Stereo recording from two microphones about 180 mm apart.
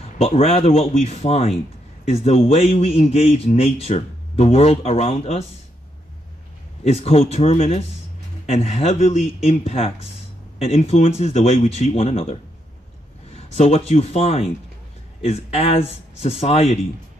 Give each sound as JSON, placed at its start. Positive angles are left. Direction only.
{"t": 0.2, "sound": "a man's voice", "side_deg": 35}
{"t": 6.8, "sound": "a man's voice", "side_deg": 35}